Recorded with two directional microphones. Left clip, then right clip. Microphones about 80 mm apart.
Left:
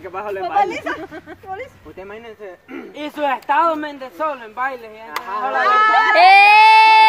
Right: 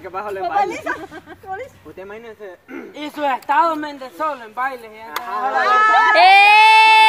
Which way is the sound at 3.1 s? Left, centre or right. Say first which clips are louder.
Even; right.